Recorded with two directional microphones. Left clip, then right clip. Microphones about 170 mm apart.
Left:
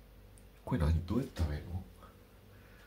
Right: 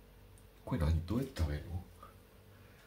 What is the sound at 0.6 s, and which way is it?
Speech, 10° left (ahead or behind).